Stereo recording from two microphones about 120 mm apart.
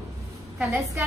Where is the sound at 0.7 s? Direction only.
25° right (ahead or behind).